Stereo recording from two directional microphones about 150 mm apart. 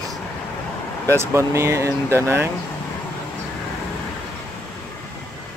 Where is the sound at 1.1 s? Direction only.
20° right (ahead or behind).